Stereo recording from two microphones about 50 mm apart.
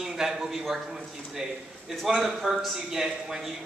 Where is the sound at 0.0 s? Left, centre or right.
Centre.